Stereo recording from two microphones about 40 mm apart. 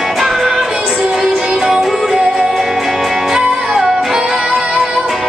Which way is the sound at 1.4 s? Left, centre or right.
Centre.